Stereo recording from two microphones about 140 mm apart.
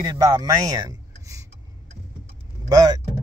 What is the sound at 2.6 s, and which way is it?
Speech, 30° right (ahead or behind).